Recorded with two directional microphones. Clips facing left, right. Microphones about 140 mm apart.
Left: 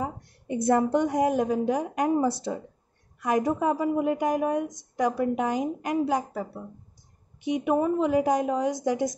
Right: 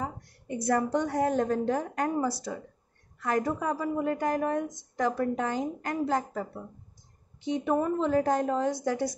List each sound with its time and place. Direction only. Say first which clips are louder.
0.7 s a woman's voice: left 4 dB; 20° left (ahead or behind)
3.2 s a woman's voice: left 4 dB; 15° left (ahead or behind)